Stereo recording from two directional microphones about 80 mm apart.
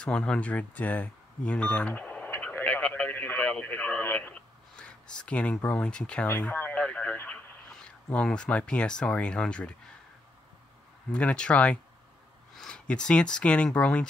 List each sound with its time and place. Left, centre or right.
0.0 s speech: centre
2.4 s radio: centre
4.7 s speech: centre
11.1 s speech: centre